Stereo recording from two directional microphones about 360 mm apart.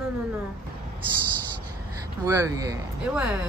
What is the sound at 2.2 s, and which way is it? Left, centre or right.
A woman's voice, centre.